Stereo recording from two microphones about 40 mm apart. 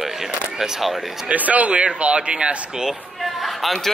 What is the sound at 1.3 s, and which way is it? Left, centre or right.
Speech, right.